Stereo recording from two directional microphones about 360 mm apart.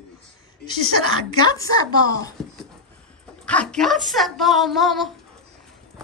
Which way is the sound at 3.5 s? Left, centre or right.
Centre.